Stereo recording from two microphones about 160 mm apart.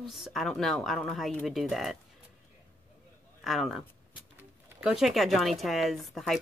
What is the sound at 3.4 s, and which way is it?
Speech, centre (ahead or behind).